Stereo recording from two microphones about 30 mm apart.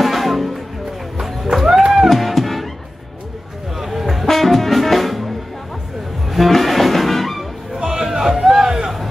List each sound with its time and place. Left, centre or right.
0.0 s music: centre
1.2 s run: centre
1.9 s music: centre
3.7 s vehicle: centre
4.3 s music: centre
7.8 s a sound: centre